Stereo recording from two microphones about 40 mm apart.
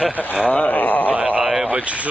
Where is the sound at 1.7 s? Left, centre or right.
Right.